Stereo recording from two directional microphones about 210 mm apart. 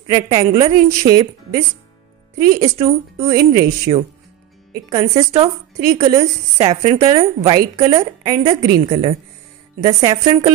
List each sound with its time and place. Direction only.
0.1 s speech: 20° right (ahead or behind)
2.6 s a woman's voice: 15° right (ahead or behind)